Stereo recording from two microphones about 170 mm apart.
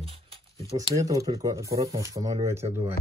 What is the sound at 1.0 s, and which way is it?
Speech, 20° right (ahead or behind).